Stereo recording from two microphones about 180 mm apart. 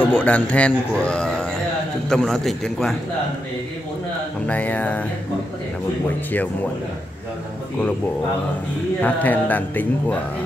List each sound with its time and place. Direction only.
0.0 s a man's voice: 10° left (ahead or behind)
4.5 s a man's voice: 10° left (ahead or behind)
9.0 s a man's voice: 10° left (ahead or behind)